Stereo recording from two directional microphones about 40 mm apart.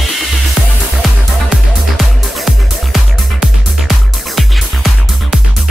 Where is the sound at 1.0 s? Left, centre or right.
Centre.